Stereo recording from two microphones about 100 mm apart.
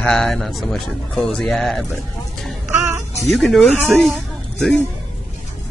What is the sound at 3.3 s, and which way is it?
Speech, centre (ahead or behind).